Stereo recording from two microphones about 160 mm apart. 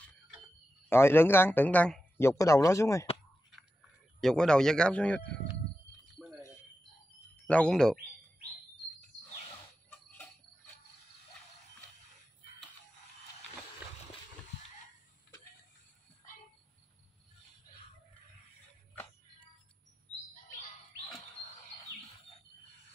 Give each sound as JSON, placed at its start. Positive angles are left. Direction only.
{"t": 0.8, "sound": "a man's voice", "side_deg": 15}
{"t": 4.2, "sound": "speech", "side_deg": 5}
{"t": 6.2, "sound": "a sound", "side_deg": 0}
{"t": 7.4, "sound": "speech", "side_deg": 5}
{"t": 9.8, "sound": "cricket", "side_deg": 10}